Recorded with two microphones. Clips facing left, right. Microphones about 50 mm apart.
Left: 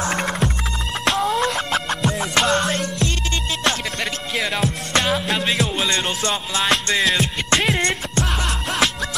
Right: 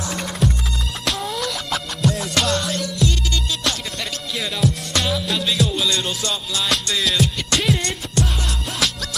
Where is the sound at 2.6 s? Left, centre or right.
Left.